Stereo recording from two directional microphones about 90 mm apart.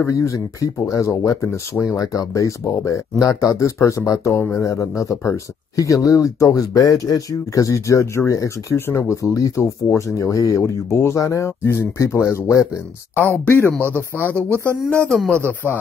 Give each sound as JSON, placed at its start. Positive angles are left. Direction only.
{"t": 0.0, "sound": "speech", "side_deg": 35}
{"t": 8.7, "sound": "speech", "side_deg": 25}
{"t": 13.1, "sound": "speech", "side_deg": 25}
{"t": 14.9, "sound": "speech", "side_deg": 10}